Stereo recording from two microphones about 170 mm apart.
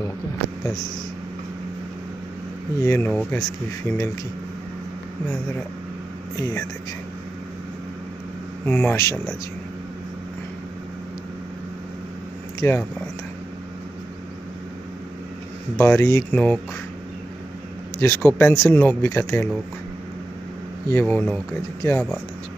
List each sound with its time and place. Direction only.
2.8 s speech: 15° left (ahead or behind)
6.3 s speech: 20° left (ahead or behind)
8.6 s speech: 15° left (ahead or behind)
12.5 s speech: 10° left (ahead or behind)
15.8 s speech: 15° left (ahead or behind)
17.9 s speech: 15° left (ahead or behind)
20.9 s speech: 10° left (ahead or behind)